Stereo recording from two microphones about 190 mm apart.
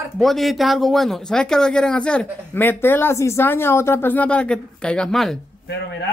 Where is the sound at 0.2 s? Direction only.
Centre (ahead or behind).